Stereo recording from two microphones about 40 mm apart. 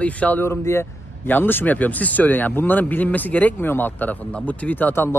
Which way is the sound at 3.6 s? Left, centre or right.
Left.